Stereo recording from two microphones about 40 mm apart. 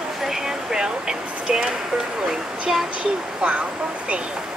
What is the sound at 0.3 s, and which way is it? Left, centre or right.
Speech, centre.